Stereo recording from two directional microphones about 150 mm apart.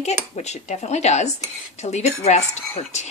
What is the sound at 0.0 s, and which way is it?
Speech, 50° left (ahead or behind).